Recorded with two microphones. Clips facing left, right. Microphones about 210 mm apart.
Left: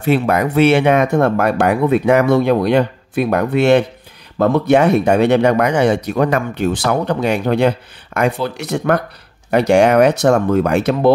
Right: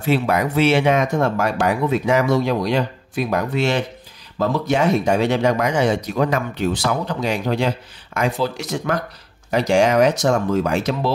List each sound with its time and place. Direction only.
0.0 s speech: 55° left (ahead or behind)